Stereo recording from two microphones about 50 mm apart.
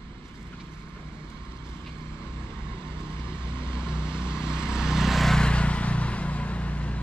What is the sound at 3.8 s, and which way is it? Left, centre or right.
Vehicle, centre.